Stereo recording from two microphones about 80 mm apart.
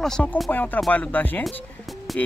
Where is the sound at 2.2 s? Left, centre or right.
Centre.